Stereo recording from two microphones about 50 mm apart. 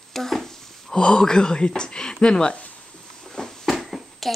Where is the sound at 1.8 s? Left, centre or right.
Centre.